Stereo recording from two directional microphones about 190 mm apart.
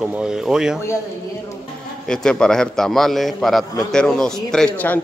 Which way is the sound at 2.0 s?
5° left (ahead or behind).